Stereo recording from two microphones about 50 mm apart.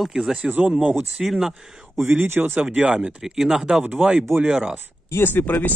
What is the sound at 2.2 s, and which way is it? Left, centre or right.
Speech, right.